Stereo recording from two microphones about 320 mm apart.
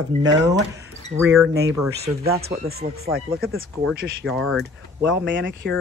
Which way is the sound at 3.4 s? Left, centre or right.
Right.